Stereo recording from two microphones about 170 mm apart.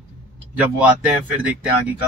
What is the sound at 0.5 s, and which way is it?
Speech, 10° right (ahead or behind).